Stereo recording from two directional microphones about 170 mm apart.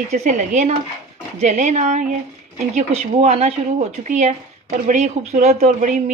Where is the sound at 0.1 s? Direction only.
45° right (ahead or behind).